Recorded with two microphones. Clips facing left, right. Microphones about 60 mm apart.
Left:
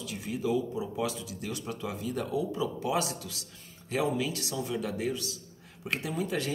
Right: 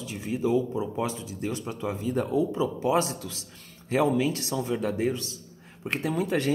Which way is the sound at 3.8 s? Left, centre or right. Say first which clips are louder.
Right 6 dB; right.